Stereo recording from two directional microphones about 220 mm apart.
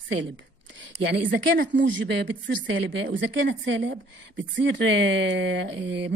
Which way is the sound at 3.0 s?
60° right (ahead or behind).